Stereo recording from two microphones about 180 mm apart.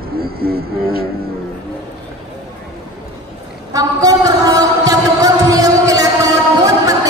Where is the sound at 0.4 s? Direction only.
55° right (ahead or behind).